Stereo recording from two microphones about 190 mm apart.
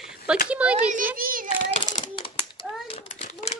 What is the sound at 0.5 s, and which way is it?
Speech, 5° right (ahead or behind).